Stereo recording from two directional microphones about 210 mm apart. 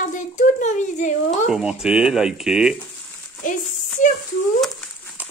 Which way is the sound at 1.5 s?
5° right (ahead or behind).